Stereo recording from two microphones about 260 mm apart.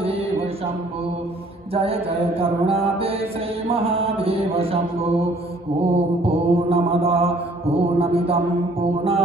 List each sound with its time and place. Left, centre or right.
1.7 s music: right